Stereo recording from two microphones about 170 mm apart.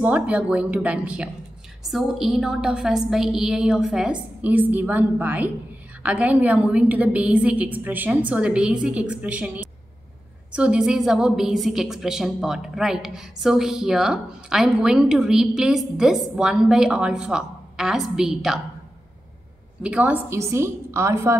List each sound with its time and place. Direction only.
0.0 s a woman's voice: 10° right (ahead or behind)
19.8 s a woman's voice: 5° right (ahead or behind)